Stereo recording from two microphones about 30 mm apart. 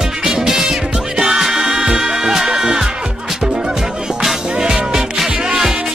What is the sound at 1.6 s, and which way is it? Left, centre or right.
Music, right.